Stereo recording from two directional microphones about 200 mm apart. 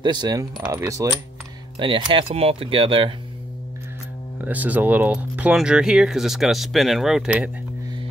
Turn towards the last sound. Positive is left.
turn(degrees=-5)  # may be behind; listen again after turning